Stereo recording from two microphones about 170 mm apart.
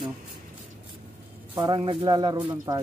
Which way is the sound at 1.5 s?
25° right (ahead or behind).